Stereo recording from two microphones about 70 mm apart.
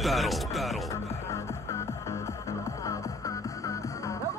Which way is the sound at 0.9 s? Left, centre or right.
Left.